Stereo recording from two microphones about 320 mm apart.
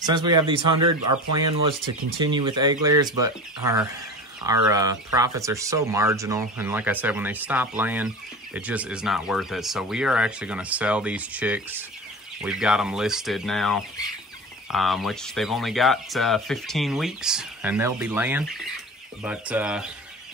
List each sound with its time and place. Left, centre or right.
0.0 s speech: centre
1.7 s speech: right
2.3 s speech: centre